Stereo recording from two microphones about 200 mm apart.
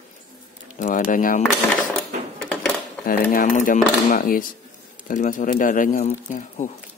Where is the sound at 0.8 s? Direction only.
40° left (ahead or behind).